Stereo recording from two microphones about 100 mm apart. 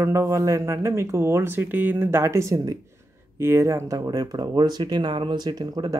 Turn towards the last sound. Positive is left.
turn(degrees=-40)  # may be behind; listen again after turning